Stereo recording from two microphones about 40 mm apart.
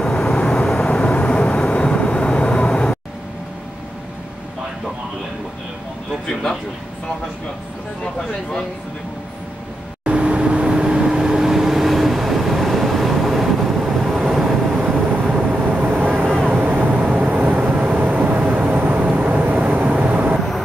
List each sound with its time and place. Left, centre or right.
0.0 s vehicle: centre
8.0 s a sound: centre
10.0 s vehicle: right; by 14.5 s centre
15.4 s vehicle: right
19.4 s vehicle: right
20.3 s vehicle: centre